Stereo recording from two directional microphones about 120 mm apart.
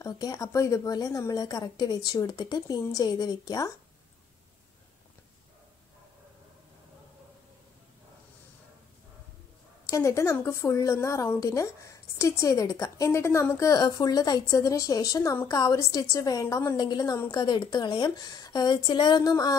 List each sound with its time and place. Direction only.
0.0 s a woman's voice: 30° left (ahead or behind)
9.8 s a woman's voice: 25° left (ahead or behind)
16.7 s a woman's voice: 35° left (ahead or behind)